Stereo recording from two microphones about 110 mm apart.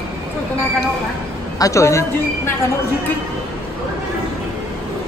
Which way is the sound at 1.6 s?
30° left (ahead or behind).